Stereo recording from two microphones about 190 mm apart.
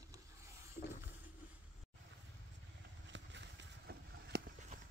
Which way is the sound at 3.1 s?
65° right (ahead or behind).